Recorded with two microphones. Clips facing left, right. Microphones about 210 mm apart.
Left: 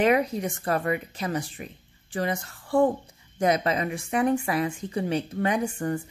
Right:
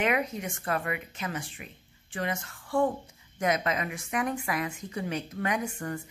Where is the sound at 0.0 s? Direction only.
35° left (ahead or behind).